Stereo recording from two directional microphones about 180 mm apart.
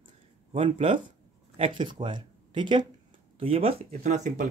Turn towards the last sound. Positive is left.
turn(degrees=-40)  # may be behind; listen again after turning